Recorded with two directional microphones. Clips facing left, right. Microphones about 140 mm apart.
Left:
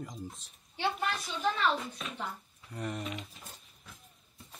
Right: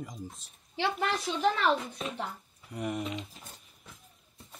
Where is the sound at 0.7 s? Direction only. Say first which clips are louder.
Right 3 dB; 85° right.